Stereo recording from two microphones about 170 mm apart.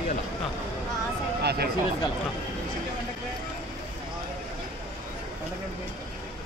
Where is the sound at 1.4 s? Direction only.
65° right (ahead or behind).